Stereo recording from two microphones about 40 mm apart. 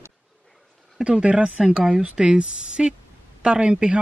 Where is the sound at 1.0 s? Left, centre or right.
Right.